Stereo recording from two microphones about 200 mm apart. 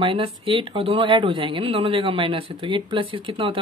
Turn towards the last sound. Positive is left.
turn(degrees=-25)  # may be behind; listen again after turning